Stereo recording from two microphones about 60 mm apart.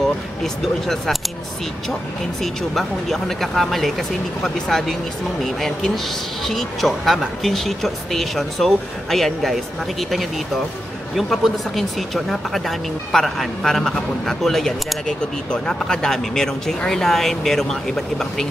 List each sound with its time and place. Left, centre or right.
0.4 s speech: centre
2.4 s speech: centre
15.0 s speech: centre